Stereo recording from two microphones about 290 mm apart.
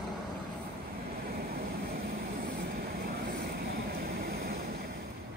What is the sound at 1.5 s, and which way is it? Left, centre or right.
Vehicle, right.